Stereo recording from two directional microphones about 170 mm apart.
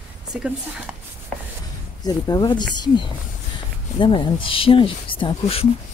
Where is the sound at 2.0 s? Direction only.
25° left (ahead or behind).